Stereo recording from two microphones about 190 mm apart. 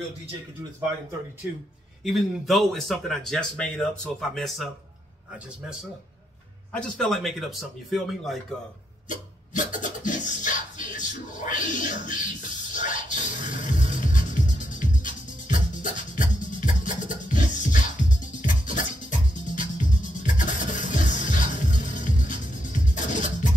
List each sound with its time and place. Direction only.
2.0 s speech: centre (ahead or behind)
6.7 s speech: 5° left (ahead or behind)
9.1 s music: 40° left (ahead or behind)